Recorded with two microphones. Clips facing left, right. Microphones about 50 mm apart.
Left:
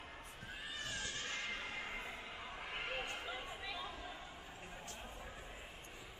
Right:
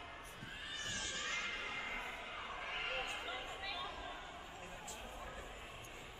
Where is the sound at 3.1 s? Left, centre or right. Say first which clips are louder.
Right 1 dB; centre.